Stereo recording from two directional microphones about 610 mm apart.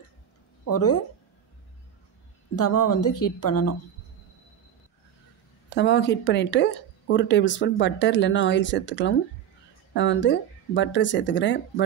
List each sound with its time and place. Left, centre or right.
0.7 s speech: left
2.5 s speech: left
5.8 s speech: centre